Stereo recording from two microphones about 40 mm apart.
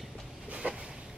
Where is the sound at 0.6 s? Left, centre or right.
Right.